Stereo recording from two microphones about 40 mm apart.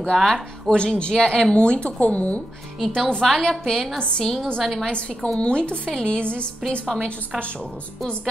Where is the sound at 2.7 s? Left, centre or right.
Centre; by 4.3 s left.